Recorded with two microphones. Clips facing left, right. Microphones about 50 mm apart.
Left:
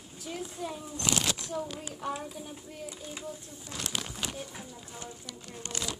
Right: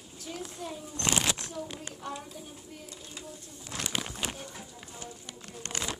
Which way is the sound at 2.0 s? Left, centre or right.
Centre.